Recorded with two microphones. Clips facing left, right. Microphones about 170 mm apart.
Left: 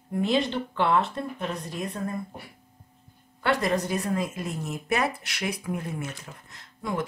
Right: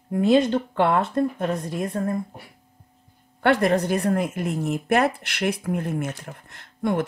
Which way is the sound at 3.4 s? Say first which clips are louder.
Right 6 dB; 60° right (ahead or behind).